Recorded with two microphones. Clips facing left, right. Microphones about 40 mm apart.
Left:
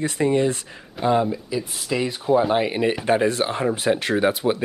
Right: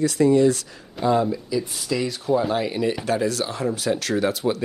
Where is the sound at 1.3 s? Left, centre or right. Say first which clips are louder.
Right 1 dB; left.